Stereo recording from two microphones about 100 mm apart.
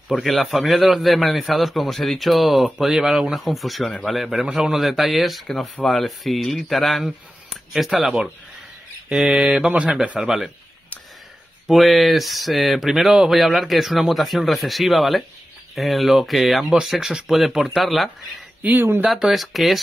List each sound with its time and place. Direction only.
0.1 s a man's voice: centre (ahead or behind)
9.1 s mantra: 5° right (ahead or behind)
11.6 s a man's voice: centre (ahead or behind)
18.6 s mantra: 20° right (ahead or behind)
19.0 s a man's voice: 5° right (ahead or behind)